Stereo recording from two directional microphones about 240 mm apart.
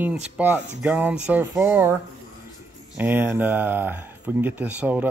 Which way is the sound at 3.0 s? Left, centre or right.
Centre.